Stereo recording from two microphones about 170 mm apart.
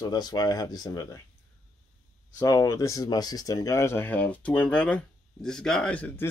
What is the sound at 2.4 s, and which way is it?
Speech, 20° left (ahead or behind).